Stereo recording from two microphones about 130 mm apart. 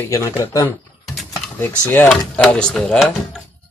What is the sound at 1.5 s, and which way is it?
Speech, 15° left (ahead or behind).